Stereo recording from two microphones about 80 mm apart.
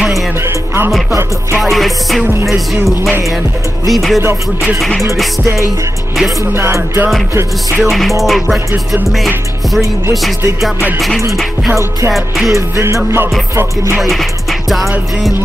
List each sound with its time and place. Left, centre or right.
1.6 s music: centre
6.5 s music: right
8.2 s music: centre
12.1 s music: centre
12.5 s music: right
13.9 s music: centre